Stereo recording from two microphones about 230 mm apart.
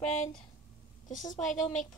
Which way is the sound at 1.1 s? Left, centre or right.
Left.